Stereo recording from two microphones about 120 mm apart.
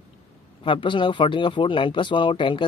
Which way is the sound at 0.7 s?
45° left (ahead or behind).